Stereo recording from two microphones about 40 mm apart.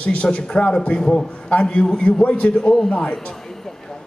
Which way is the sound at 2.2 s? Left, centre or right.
Left.